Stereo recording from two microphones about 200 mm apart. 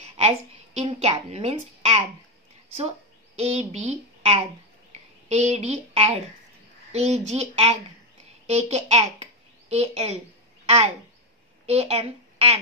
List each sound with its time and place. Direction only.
0.0 s a woman's voice: 30° right (ahead or behind)
3.3 s a child's voice: 30° right (ahead or behind)
11.6 s speech: 30° right (ahead or behind)